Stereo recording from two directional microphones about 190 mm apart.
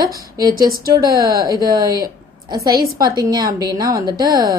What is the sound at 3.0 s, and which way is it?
Speech, 20° right (ahead or behind).